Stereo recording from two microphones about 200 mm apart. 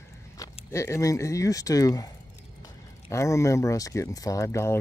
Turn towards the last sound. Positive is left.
turn(degrees=15)  # may be behind; listen again after turning